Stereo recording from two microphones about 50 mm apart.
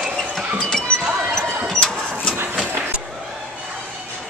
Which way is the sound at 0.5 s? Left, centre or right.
Centre.